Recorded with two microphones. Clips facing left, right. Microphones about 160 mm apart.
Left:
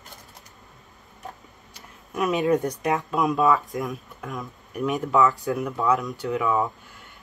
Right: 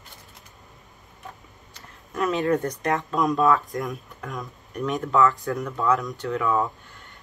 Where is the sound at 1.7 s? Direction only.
15° left (ahead or behind).